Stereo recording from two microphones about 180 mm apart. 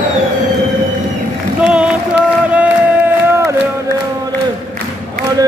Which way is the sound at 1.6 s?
5° right (ahead or behind).